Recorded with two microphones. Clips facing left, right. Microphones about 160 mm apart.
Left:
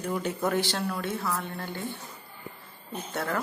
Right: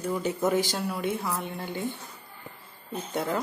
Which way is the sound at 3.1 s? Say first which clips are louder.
Right 2 dB; 15° right (ahead or behind).